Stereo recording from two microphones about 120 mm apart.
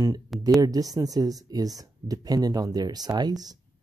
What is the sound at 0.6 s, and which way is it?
Speech, 30° right (ahead or behind).